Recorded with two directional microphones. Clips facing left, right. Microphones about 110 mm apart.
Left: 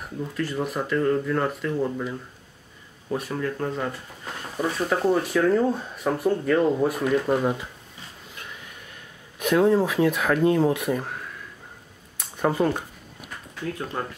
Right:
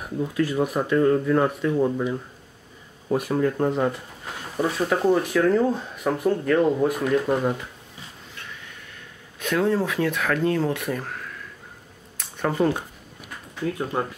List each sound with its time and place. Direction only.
0.0 s speech: 5° right (ahead or behind)
1.8 s speech: 15° right (ahead or behind)
3.1 s speech: 10° right (ahead or behind)
3.3 s speech: 20° right (ahead or behind)
4.6 s speech: 5° right (ahead or behind)
9.4 s speech: 10° left (ahead or behind)
14.0 s speech: 15° right (ahead or behind)